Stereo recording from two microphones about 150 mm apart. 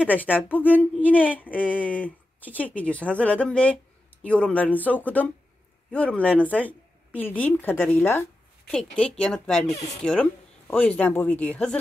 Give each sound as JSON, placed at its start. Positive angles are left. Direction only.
{"t": 0.1, "sound": "speech", "side_deg": 10}
{"t": 10.0, "sound": "speech", "side_deg": 55}
{"t": 10.8, "sound": "speech", "side_deg": 10}